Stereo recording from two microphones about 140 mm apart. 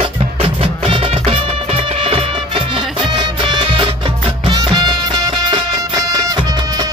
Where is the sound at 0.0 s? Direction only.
40° right (ahead or behind).